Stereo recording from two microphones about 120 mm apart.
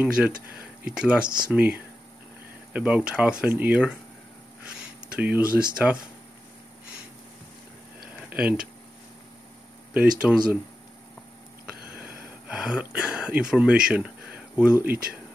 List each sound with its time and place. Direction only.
0.0 s speech: 10° right (ahead or behind)
1.2 s speech: 40° right (ahead or behind)
1.5 s speech: 10° right (ahead or behind)
5.1 s speech: 10° right (ahead or behind)
8.3 s speech: 10° right (ahead or behind)
9.9 s speech: 10° right (ahead or behind)
11.9 s speech: 10° right (ahead or behind)